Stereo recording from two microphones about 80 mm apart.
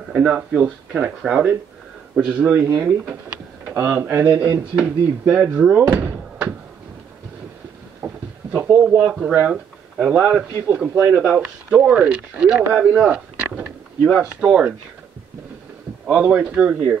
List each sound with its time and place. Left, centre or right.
0.1 s speech: centre
6.1 s thunk: centre
8.0 s a sound: centre
9.5 s speech: centre
16.1 s speech: centre